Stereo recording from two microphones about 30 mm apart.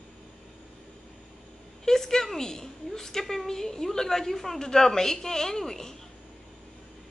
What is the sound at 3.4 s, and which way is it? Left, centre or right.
A woman's voice, centre.